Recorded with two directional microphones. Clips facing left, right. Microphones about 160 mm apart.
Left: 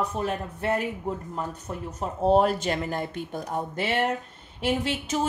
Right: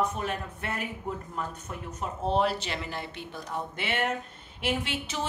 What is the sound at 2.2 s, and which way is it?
A woman's voice, 45° left (ahead or behind).